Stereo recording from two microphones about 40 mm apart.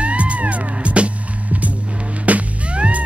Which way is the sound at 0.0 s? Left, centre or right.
Right.